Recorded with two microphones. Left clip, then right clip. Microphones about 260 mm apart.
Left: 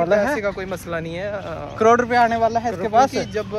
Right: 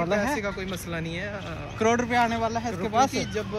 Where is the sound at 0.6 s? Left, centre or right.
Centre.